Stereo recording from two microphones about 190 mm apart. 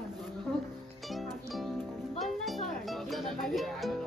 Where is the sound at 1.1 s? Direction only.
Centre (ahead or behind).